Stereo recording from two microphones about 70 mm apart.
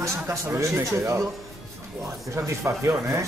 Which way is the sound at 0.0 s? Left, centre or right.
Right.